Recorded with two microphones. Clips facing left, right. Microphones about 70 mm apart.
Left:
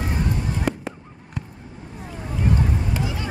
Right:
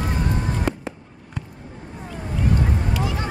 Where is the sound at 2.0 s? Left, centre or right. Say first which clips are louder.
Right 1 dB; centre.